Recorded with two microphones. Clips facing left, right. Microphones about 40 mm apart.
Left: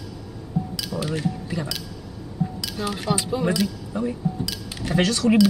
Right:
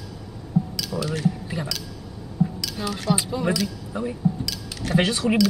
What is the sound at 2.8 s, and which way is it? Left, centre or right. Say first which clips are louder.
Speech: even; centre.